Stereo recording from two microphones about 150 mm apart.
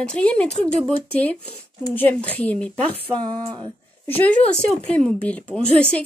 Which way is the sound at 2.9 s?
35° right (ahead or behind).